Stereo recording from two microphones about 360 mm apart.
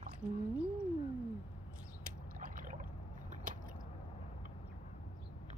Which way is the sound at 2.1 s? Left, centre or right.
Right.